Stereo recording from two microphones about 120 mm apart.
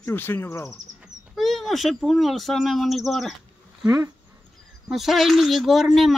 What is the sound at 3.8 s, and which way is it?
Speech, 30° right (ahead or behind).